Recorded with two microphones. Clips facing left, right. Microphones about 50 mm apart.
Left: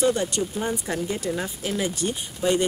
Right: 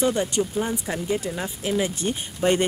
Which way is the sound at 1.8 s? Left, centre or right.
Right.